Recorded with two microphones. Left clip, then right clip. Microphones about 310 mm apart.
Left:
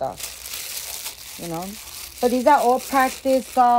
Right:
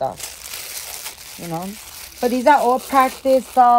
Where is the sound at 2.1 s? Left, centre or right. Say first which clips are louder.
Right 2 dB; right.